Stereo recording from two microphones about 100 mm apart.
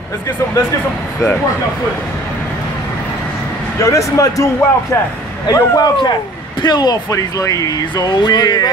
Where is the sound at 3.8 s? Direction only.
30° left (ahead or behind).